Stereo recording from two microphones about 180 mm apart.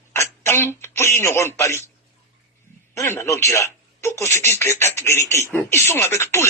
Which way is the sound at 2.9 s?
15° left (ahead or behind).